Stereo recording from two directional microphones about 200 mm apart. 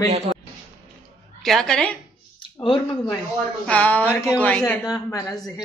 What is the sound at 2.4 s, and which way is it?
Speech, 20° left (ahead or behind).